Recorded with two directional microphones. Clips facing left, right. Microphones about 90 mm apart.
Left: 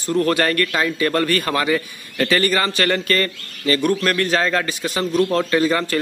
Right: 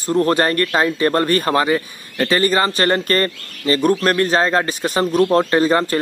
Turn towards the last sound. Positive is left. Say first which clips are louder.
# right 3 dB
turn(degrees=-35)  # may be behind; listen again after turning